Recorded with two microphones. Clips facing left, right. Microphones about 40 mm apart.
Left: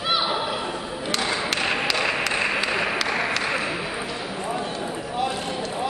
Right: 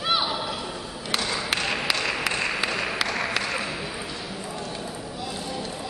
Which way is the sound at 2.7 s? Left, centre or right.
Centre.